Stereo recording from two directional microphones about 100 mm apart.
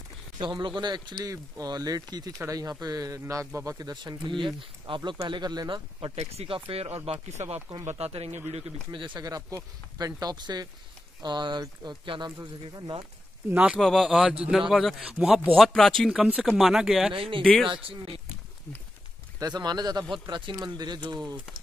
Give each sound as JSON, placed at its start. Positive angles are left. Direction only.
{"t": 0.4, "sound": "speech", "side_deg": -50}
{"t": 5.9, "sound": "speech", "side_deg": -80}
{"t": 8.9, "sound": "speech", "side_deg": -55}
{"t": 9.2, "sound": "speech", "side_deg": -35}
{"t": 13.5, "sound": "speech", "side_deg": -15}
{"t": 13.7, "sound": "a man's voice", "side_deg": 5}
{"t": 17.1, "sound": "speech", "side_deg": -60}
{"t": 17.4, "sound": "a man's voice", "side_deg": 5}
{"t": 17.6, "sound": "speech", "side_deg": -65}
{"t": 19.4, "sound": "speech", "side_deg": -45}